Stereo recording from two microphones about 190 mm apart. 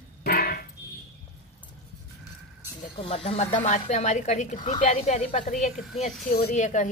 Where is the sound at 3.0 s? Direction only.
30° left (ahead or behind).